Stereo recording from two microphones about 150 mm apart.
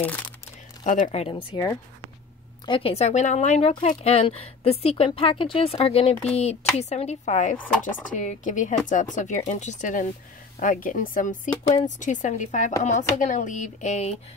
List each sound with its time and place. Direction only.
0.8 s speech: 55° left (ahead or behind)
1.3 s speech: 25° left (ahead or behind); by 14.1 s 50° left (ahead or behind)